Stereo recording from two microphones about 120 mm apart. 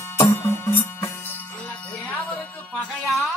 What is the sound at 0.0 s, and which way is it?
Music, 20° left (ahead or behind).